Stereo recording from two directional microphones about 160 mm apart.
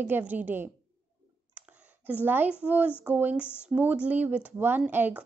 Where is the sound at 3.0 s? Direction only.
10° right (ahead or behind).